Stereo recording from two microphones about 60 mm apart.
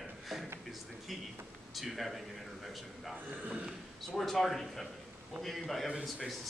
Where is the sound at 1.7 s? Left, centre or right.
Centre.